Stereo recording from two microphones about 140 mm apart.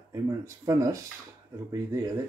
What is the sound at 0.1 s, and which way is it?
Speech, 25° right (ahead or behind).